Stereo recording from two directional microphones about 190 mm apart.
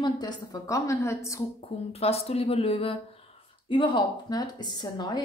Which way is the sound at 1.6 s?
30° left (ahead or behind).